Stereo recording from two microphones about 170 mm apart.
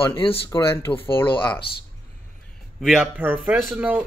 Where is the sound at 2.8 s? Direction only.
Centre (ahead or behind).